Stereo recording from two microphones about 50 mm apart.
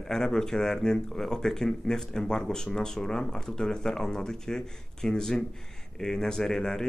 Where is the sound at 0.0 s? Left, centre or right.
Centre.